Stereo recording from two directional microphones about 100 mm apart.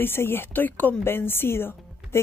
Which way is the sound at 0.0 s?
20° left (ahead or behind).